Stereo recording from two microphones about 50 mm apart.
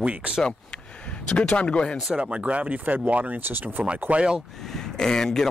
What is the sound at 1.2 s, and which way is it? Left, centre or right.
Speech, left.